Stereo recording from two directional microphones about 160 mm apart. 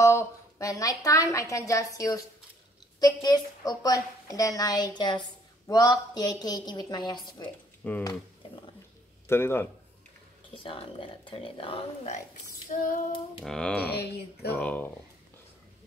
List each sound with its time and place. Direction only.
0.0 s a woman's voice: 15° left (ahead or behind)
7.8 s speech: 10° left (ahead or behind)
8.4 s roaring cats: 35° left (ahead or behind)
9.3 s speech: 15° left (ahead or behind)
10.5 s speech: 35° left (ahead or behind)
12.7 s child singing: 45° left (ahead or behind)
13.4 s speech: 5° left (ahead or behind)
13.8 s speech: 90° left
14.5 s speech: 10° left (ahead or behind)